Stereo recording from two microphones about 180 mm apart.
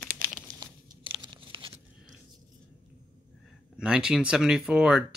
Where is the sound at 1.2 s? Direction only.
25° right (ahead or behind).